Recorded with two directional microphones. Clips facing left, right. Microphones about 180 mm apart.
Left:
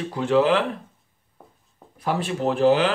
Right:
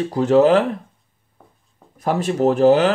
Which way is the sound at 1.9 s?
45° right (ahead or behind).